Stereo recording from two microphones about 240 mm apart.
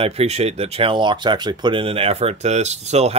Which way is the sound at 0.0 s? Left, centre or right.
Right.